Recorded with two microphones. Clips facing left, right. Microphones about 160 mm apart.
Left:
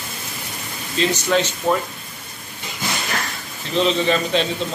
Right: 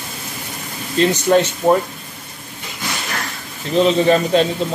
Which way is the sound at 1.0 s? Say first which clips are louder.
Right 5 dB; 55° right (ahead or behind).